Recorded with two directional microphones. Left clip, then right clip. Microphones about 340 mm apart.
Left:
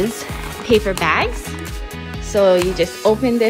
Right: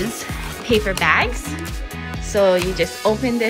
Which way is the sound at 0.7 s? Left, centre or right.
Centre.